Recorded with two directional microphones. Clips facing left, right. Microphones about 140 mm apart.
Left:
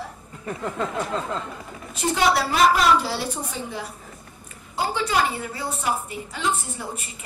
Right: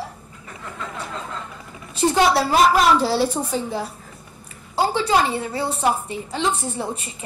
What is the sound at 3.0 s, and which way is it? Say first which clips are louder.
Speech: right 8 dB; 30° right (ahead or behind).